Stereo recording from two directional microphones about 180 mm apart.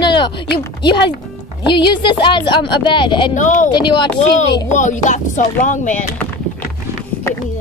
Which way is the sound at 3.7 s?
25° left (ahead or behind).